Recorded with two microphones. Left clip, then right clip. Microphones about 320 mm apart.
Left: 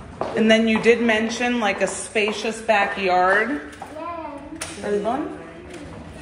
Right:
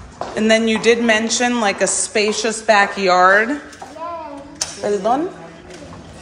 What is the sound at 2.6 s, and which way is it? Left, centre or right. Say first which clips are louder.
Speech: right 5 dB; right.